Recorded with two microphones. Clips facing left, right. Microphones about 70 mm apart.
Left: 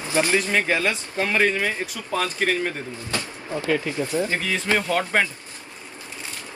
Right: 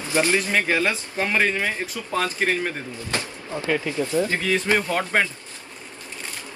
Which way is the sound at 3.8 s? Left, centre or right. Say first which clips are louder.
Right 1 dB; left.